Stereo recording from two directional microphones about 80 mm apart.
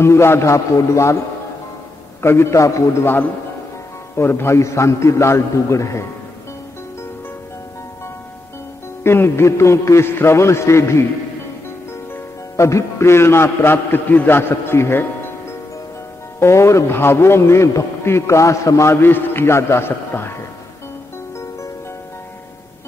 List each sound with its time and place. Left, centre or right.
0.0 s a man's voice: left
2.2 s a man's voice: left
4.1 s a man's voice: left
9.0 s a man's voice: left
12.5 s a man's voice: left
16.3 s a man's voice: left
18.9 s a man's voice: left